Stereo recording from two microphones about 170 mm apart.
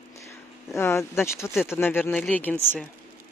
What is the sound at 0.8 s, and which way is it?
Speech, 15° left (ahead or behind).